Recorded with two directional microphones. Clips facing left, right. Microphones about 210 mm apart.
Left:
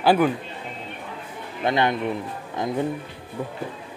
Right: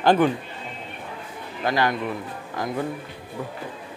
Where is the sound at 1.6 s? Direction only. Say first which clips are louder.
Left 1 dB; 25° left (ahead or behind).